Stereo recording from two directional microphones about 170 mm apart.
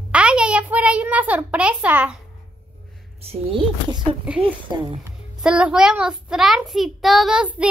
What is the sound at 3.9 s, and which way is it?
Speech, 30° right (ahead or behind).